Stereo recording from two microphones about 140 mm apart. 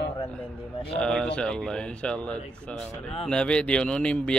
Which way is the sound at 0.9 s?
5° left (ahead or behind).